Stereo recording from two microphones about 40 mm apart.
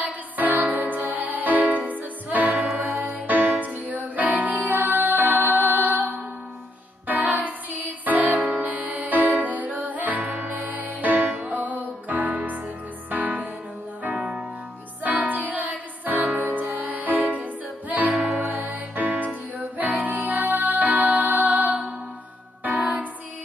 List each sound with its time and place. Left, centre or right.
0.0 s music: right
7.1 s music: right
15.0 s music: right